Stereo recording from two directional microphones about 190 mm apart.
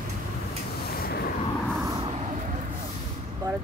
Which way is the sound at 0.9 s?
50° left (ahead or behind).